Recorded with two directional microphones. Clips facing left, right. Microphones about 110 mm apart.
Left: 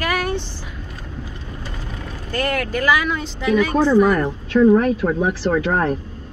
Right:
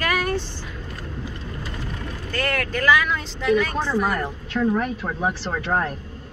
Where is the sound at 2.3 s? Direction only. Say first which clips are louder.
Left 4 dB; 15° left (ahead or behind).